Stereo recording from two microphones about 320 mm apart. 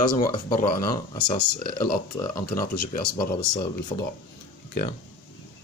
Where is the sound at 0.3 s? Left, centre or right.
Left.